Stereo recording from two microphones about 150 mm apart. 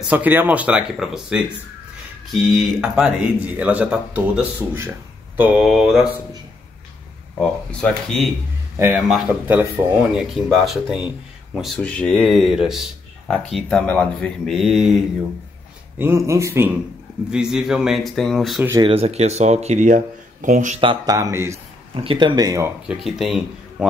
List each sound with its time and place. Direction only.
0.1 s speech: 10° right (ahead or behind)
2.5 s speech: 5° right (ahead or behind)
5.4 s speech: 5° right (ahead or behind)
7.3 s speech: 5° left (ahead or behind)
16.0 s speech: 15° right (ahead or behind)
17.3 s speech: 5° right (ahead or behind)
18.8 s speech: 40° right (ahead or behind); by 20.8 s 55° right (ahead or behind)
20.8 s speech: 30° right (ahead or behind)
21.9 s speech: 35° right (ahead or behind)
22.8 s speech: centre (ahead or behind)